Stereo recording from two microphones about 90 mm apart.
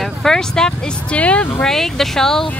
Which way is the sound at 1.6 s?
5° left (ahead or behind).